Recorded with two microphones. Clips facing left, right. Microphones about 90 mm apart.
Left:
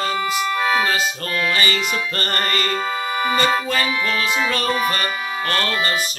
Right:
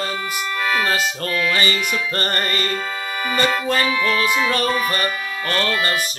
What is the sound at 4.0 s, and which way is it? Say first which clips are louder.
Music: right 2 dB; 25° left (ahead or behind).